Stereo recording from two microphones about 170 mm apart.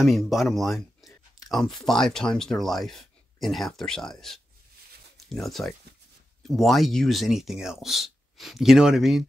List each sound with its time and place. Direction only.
0.0 s speech: centre (ahead or behind)